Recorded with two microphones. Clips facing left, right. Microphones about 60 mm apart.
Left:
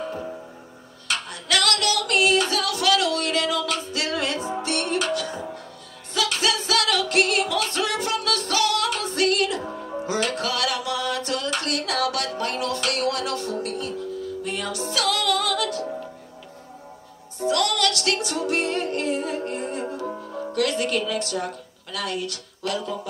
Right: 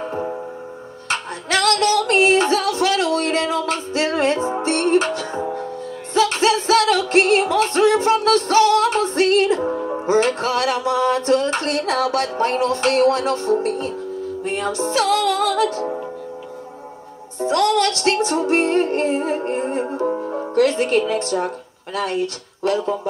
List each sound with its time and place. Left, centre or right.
0.0 s music: right
17.4 s music: right